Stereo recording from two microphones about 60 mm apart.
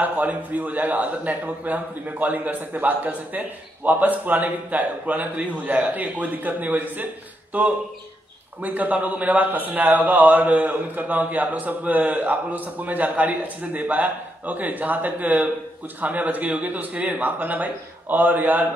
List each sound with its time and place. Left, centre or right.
0.0 s a man's voice: right